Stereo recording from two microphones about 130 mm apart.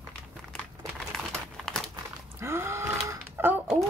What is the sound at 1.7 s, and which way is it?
Crumpling, 5° left (ahead or behind).